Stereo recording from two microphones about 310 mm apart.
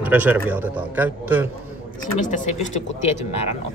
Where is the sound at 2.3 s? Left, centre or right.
Left.